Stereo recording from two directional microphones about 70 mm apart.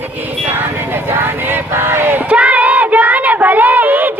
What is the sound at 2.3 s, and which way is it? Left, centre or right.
Child singing, centre.